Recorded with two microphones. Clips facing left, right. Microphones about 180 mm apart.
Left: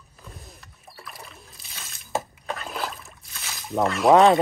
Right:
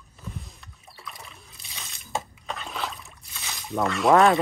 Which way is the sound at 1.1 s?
Centre (ahead or behind).